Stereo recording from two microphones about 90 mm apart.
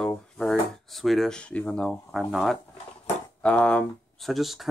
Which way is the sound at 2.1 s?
Centre (ahead or behind).